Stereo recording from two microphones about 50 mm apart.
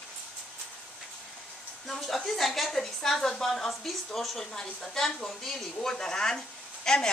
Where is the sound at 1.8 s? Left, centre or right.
Centre.